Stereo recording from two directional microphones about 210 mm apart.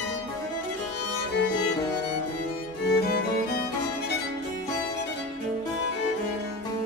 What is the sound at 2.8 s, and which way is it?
Music, 50° left (ahead or behind).